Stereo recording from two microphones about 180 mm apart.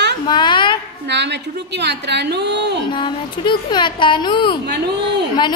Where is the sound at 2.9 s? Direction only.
25° left (ahead or behind).